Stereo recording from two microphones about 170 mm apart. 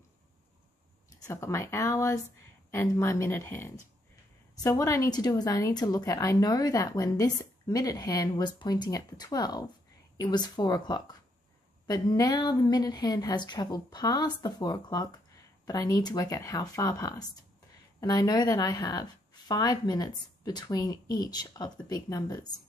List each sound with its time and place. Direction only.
1.2 s a woman's voice: 15° left (ahead or behind)